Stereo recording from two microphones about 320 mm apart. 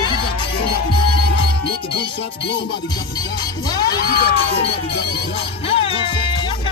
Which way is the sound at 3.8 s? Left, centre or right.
Left.